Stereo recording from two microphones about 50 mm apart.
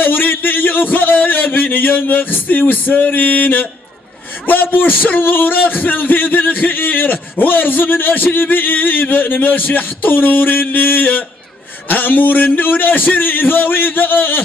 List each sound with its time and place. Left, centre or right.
0.0 s speech: left